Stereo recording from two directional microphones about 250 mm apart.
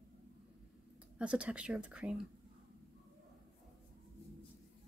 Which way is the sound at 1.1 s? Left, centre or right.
Centre.